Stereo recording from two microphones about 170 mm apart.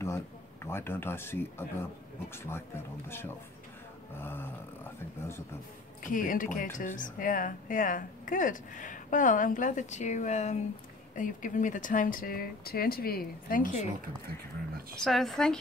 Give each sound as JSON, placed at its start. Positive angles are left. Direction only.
{"t": 0.7, "sound": "speech", "side_deg": 15}
{"t": 6.0, "sound": "speech", "side_deg": 50}
{"t": 15.0, "sound": "speech", "side_deg": 0}